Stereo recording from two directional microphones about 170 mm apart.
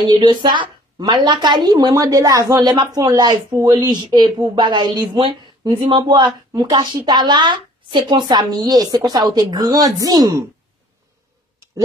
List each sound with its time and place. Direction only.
0.1 s a woman's voice: 25° right (ahead or behind)